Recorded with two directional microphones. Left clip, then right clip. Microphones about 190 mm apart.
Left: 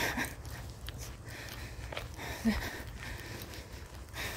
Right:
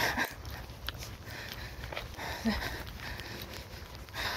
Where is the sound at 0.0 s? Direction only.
60° left (ahead or behind).